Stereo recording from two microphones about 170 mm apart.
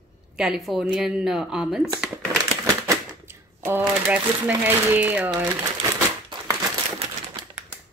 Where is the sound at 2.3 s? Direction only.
15° right (ahead or behind).